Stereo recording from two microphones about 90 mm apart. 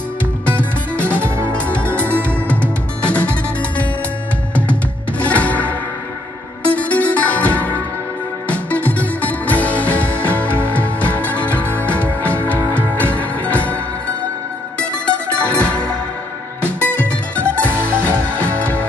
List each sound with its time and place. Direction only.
0.6 s music: 15° left (ahead or behind)
5.2 s music: 15° left (ahead or behind)
15.5 s music: 15° left (ahead or behind)
17.5 s music: 25° right (ahead or behind)
18.4 s music: 20° left (ahead or behind)